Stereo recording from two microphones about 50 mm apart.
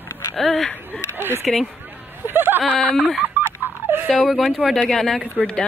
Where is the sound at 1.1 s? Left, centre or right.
Right.